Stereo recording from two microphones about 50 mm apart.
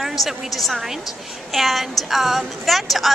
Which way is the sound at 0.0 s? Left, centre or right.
Centre.